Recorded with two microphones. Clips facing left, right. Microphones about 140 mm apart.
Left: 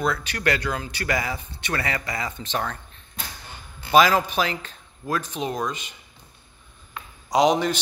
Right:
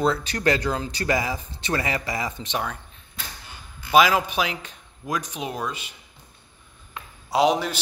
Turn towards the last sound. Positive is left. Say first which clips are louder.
# left 1 dB
turn(degrees=-5)  # may be behind; listen again after turning